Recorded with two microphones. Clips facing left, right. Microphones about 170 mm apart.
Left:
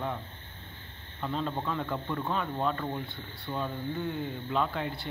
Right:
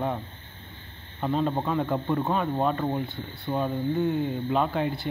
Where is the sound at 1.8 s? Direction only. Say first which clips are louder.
Right 7 dB; 40° right (ahead or behind).